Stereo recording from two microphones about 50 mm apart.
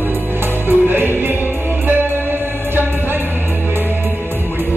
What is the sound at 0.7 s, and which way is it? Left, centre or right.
Music, right.